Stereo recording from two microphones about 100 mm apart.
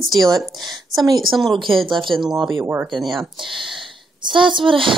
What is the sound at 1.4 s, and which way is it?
Speech, 50° right (ahead or behind).